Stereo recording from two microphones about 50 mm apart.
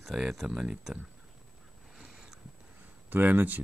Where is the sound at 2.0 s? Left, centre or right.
Centre.